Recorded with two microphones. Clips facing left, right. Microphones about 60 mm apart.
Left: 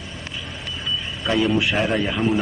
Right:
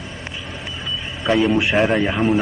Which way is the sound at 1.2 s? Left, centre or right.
Centre.